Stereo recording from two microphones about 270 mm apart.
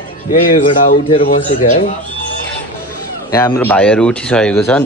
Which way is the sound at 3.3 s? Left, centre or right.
Centre.